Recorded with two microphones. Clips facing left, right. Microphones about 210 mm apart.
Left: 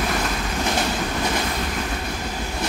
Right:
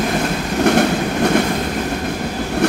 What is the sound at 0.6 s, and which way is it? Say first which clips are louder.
Train: right 11 dB; 65° right (ahead or behind).